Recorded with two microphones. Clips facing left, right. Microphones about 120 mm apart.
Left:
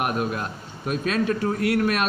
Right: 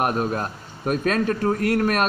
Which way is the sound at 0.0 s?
35° right (ahead or behind).